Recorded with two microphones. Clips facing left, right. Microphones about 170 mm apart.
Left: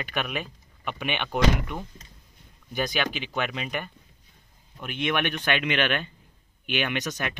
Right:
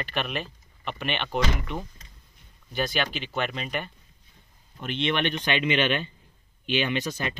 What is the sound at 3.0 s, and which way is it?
Speech, 5° right (ahead or behind).